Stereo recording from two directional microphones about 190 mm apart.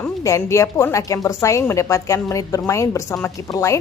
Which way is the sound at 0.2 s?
15° left (ahead or behind).